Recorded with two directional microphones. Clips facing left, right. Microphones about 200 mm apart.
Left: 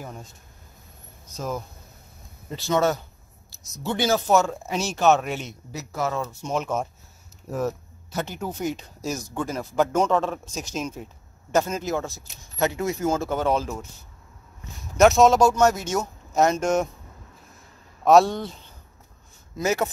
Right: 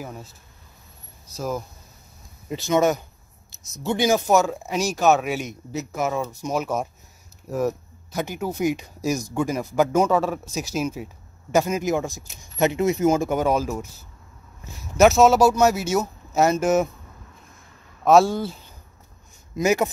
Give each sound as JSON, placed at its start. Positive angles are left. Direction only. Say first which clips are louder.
{"t": 0.0, "sound": "speech", "louder": "right 2 dB", "side_deg": -5}
{"t": 2.7, "sound": "speech", "louder": "right 2 dB", "side_deg": -15}
{"t": 5.7, "sound": "speech", "louder": "right 2 dB", "side_deg": -20}
{"t": 18.0, "sound": "speech", "louder": "right 1 dB", "side_deg": 0}